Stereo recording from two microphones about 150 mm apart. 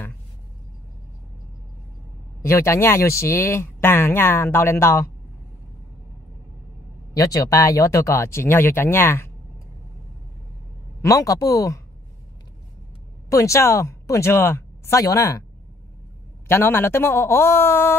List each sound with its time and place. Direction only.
2.4 s speech: 20° left (ahead or behind)
7.2 s speech: 25° left (ahead or behind)
11.0 s speech: 20° left (ahead or behind)
13.3 s speech: 20° left (ahead or behind)
16.4 s speech: 15° left (ahead or behind)